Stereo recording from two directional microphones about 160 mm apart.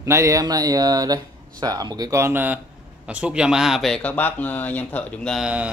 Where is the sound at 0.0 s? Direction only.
20° right (ahead or behind).